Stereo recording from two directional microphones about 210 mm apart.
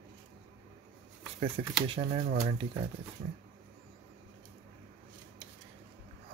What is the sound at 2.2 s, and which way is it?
Speech, 45° right (ahead or behind).